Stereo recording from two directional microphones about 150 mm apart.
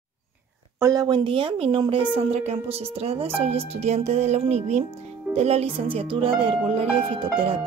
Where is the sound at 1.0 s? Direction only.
35° right (ahead or behind).